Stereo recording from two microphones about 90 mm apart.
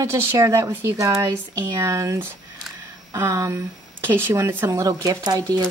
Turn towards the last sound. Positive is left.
turn(degrees=-45)  # may be behind; listen again after turning